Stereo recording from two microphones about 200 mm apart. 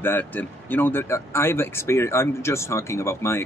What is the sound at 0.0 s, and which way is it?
Speech, 10° left (ahead or behind).